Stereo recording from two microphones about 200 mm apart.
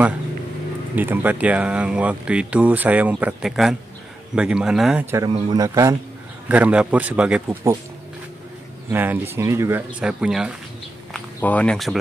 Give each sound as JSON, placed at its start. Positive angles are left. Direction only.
{"t": 0.9, "sound": "speech", "side_deg": -10}
{"t": 5.1, "sound": "speech", "side_deg": -20}
{"t": 6.5, "sound": "speech", "side_deg": -5}
{"t": 8.9, "sound": "speech", "side_deg": -10}